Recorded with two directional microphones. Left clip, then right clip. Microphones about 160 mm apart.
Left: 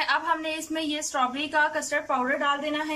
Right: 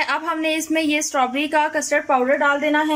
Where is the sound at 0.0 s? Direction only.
25° right (ahead or behind).